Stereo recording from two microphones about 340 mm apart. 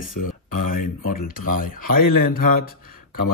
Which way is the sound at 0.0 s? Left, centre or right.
Left.